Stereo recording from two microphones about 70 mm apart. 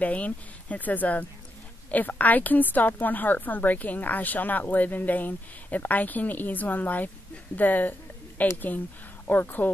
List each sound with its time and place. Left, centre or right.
0.0 s a woman's voice: left